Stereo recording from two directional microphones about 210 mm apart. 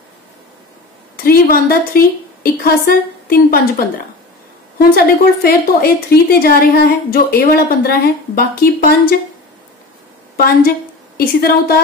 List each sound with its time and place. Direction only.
1.1 s a woman's voice: 45° left (ahead or behind)
10.3 s a woman's voice: 45° left (ahead or behind)